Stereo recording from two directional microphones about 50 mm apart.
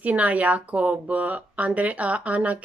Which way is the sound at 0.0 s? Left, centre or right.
Right.